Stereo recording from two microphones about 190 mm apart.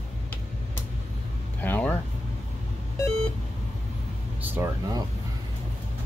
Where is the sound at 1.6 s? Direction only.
10° left (ahead or behind).